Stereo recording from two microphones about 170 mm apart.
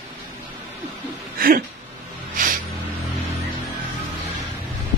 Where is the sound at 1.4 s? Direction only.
60° right (ahead or behind).